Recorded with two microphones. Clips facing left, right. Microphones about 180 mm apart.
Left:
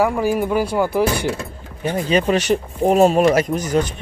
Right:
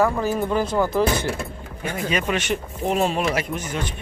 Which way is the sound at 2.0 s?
30° left (ahead or behind).